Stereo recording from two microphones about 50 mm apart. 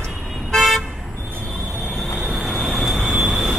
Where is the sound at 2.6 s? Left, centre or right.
Centre.